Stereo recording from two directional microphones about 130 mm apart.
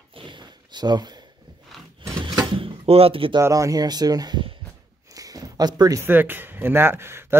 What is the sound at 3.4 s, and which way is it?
Speech, 25° right (ahead or behind).